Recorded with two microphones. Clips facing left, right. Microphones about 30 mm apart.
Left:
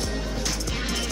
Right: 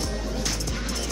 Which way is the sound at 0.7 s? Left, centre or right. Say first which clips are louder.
Left 2 dB; left.